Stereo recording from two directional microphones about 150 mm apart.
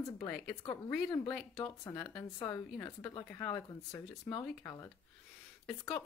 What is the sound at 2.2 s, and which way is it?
Speech, 25° left (ahead or behind).